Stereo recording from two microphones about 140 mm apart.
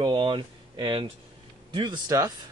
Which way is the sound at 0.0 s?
35° right (ahead or behind).